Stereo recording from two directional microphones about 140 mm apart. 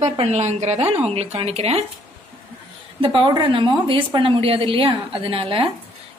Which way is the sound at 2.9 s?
35° right (ahead or behind).